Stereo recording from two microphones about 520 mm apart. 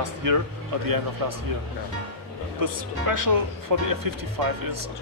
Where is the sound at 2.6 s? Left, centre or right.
Right.